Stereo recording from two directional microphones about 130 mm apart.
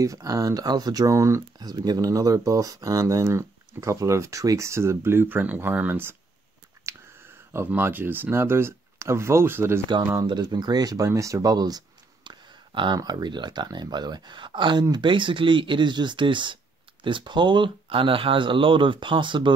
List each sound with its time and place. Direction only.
0.0 s speech: 25° right (ahead or behind)
10.2 s speech: 35° right (ahead or behind)